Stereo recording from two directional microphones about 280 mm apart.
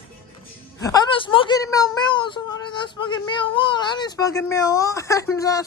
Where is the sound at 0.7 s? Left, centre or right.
Centre.